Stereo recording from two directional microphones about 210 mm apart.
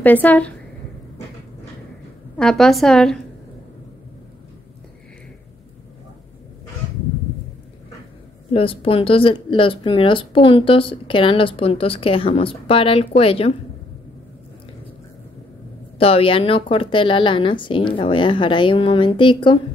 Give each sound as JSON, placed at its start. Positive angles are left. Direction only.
{"t": 0.0, "sound": "a woman's voice", "side_deg": 10}
{"t": 2.3, "sound": "a woman's voice", "side_deg": 0}
{"t": 8.5, "sound": "a woman's voice", "side_deg": 25}
{"t": 16.0, "sound": "a woman's voice", "side_deg": 25}